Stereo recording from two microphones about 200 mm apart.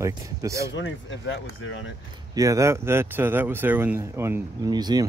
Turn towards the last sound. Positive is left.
turn(degrees=-20)  # may be behind; listen again after turning